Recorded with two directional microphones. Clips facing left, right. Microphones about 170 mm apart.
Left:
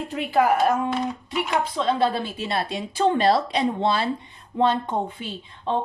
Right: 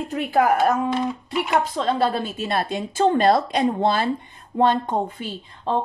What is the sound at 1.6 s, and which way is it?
A woman's voice, 45° right (ahead or behind).